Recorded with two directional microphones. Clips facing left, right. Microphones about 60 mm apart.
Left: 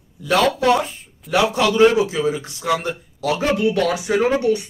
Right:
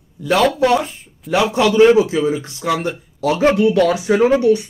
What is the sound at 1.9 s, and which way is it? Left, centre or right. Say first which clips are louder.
Speech: right 6 dB; right.